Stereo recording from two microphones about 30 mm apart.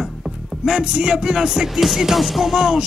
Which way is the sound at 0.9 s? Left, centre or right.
Right.